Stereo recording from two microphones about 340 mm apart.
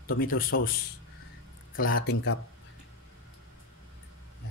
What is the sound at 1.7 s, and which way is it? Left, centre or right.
Speech, left.